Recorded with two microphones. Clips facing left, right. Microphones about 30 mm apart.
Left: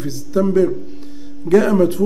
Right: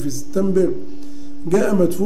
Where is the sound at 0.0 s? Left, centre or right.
Left.